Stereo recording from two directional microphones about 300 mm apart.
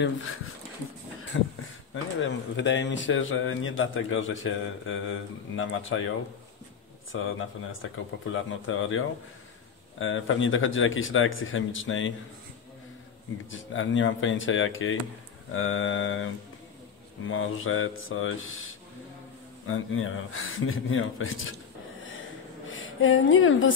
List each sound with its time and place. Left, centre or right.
1.3 s a man's voice: left
13.5 s a man's voice: left
17.3 s a man's voice: left
22.7 s speech: left